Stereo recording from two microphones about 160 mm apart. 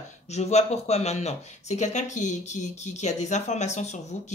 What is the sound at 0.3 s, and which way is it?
Speech, 45° left (ahead or behind).